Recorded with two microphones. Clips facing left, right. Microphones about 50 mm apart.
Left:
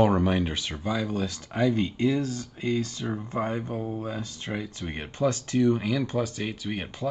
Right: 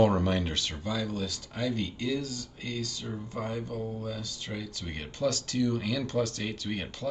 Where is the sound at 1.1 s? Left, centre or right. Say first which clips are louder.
Left 5 dB; left.